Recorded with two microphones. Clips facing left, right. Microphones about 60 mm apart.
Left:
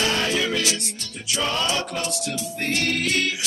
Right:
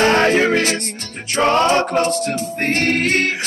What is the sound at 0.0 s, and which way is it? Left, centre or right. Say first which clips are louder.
Music: right 9 dB; right.